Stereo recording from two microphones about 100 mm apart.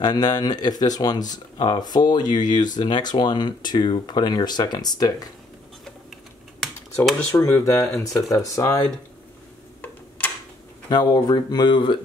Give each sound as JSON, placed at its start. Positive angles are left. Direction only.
{"t": 0.0, "sound": "speech", "side_deg": 45}
{"t": 7.3, "sound": "speech", "side_deg": 25}
{"t": 10.9, "sound": "speech", "side_deg": 45}